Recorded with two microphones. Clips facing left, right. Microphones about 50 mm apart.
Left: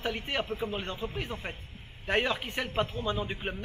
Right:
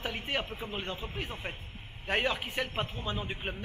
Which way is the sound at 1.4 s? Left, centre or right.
Centre.